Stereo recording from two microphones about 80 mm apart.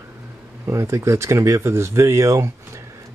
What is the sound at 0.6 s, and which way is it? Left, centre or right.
Speech, right.